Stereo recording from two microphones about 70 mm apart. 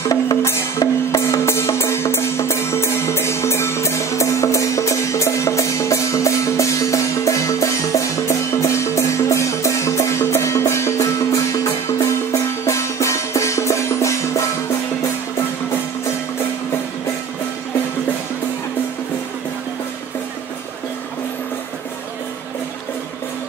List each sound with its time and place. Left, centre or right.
0.4 s music: left